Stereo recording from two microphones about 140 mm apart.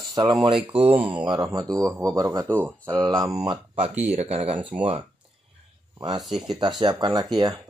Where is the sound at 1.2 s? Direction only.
30° right (ahead or behind).